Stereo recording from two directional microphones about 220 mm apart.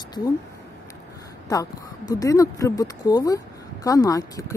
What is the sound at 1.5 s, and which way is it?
Speech, 15° left (ahead or behind).